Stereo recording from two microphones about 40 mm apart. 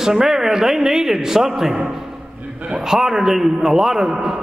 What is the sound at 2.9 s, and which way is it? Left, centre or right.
A man's voice, centre.